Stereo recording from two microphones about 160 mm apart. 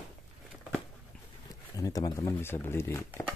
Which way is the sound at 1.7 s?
20° left (ahead or behind).